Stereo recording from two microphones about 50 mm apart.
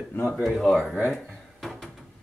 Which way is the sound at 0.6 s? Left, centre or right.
Centre.